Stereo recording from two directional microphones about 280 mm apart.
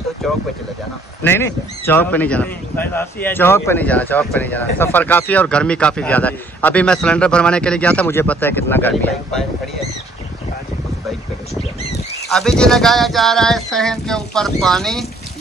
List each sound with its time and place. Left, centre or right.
0.2 s a man's voice: centre
12.3 s a man's voice: centre